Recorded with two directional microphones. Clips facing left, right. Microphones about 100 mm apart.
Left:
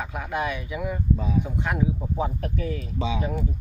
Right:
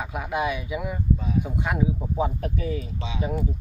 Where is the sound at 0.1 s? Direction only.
5° right (ahead or behind).